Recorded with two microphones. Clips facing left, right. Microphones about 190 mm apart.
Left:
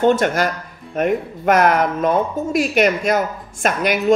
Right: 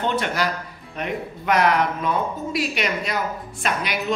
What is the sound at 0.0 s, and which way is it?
Speech, 45° left (ahead or behind).